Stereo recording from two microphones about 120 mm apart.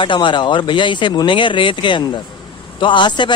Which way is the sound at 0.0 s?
40° left (ahead or behind).